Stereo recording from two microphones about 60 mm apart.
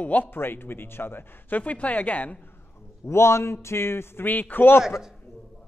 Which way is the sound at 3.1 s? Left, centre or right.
Left.